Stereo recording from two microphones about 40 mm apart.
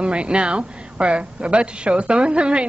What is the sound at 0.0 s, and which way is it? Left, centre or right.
A woman's voice, right.